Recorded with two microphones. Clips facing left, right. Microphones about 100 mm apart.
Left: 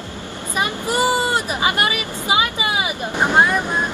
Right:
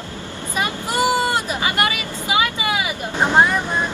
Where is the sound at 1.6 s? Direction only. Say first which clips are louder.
Left 1 dB; 25° left (ahead or behind).